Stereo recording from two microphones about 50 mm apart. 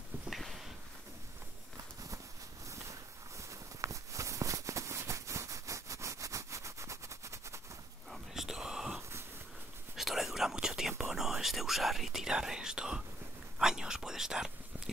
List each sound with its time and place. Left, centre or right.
0.3 s a sound: centre
2.7 s walk: right
8.1 s whispering: centre